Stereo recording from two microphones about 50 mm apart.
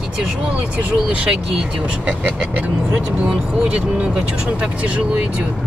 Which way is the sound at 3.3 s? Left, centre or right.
Centre.